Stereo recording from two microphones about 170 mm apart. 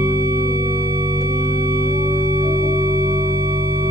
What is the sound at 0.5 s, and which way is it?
Music, 20° right (ahead or behind).